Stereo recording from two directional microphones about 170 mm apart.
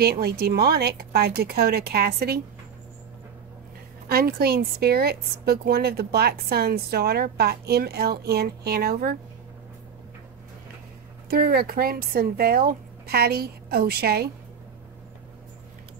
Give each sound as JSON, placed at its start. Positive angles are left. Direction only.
{"t": 0.0, "sound": "a woman's voice", "side_deg": -70}
{"t": 4.1, "sound": "a woman's voice", "side_deg": -65}
{"t": 11.2, "sound": "speech", "side_deg": -65}